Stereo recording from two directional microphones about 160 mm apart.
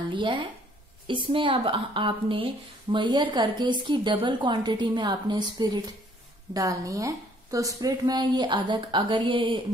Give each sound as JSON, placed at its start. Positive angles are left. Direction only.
{"t": 0.1, "sound": "a woman's voice", "side_deg": -30}